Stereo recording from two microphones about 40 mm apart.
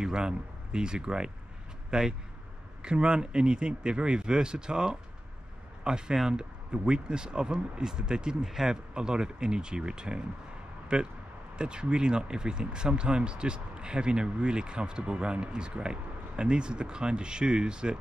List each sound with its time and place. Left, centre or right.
0.0 s speech: right